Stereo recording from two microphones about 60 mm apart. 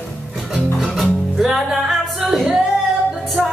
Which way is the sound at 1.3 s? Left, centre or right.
Centre.